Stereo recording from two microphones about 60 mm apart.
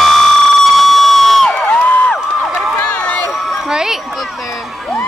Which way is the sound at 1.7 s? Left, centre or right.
Left.